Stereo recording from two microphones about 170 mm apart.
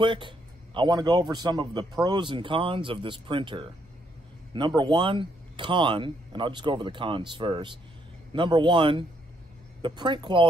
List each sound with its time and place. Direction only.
0.0 s speech: 30° right (ahead or behind)